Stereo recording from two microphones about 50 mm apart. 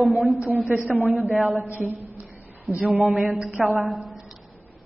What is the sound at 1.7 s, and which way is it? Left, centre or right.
A woman's voice, right.